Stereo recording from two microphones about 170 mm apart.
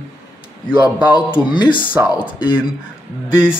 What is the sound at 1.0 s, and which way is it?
Speech, 25° left (ahead or behind).